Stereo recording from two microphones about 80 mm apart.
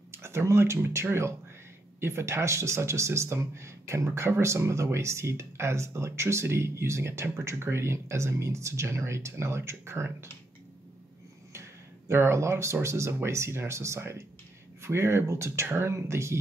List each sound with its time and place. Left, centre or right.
0.1 s speech: right
12.1 s speech: right